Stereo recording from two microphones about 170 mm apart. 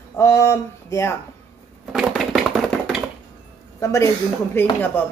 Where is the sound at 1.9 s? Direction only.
Centre (ahead or behind).